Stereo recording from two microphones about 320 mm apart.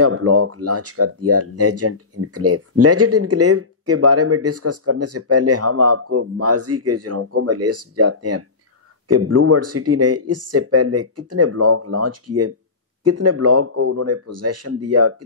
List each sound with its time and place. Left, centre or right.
0.0 s speech: right